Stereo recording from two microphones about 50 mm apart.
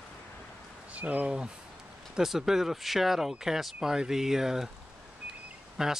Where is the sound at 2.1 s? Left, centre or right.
Centre.